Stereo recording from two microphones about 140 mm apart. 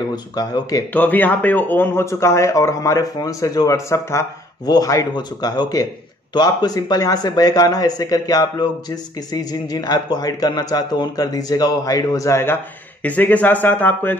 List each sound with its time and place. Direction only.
0.1 s speech: 30° left (ahead or behind)
0.9 s speech: 10° left (ahead or behind)